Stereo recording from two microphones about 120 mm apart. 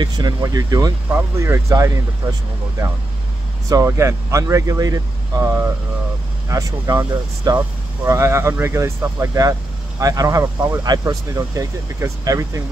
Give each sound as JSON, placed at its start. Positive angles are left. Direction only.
{"t": 0.0, "sound": "speech", "side_deg": -35}
{"t": 3.6, "sound": "speech", "side_deg": -25}
{"t": 8.0, "sound": "speech", "side_deg": -25}